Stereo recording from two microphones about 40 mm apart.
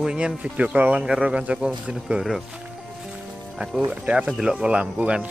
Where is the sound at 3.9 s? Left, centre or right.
Right.